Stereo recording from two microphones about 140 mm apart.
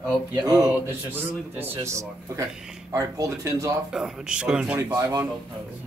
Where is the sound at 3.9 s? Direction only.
5° right (ahead or behind).